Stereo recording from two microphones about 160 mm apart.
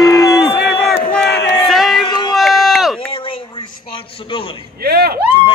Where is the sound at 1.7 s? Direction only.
Centre (ahead or behind).